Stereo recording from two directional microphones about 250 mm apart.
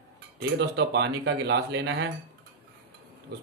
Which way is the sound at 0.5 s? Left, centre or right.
Right.